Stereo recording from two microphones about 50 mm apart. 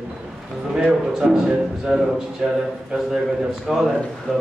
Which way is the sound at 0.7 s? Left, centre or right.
Centre.